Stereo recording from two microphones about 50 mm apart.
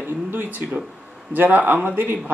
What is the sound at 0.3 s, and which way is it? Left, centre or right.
Speech, right.